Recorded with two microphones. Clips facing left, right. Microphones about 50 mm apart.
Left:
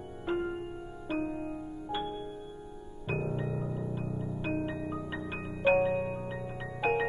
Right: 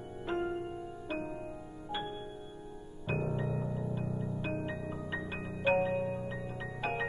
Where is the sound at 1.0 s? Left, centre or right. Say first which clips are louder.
Left 6 dB; centre.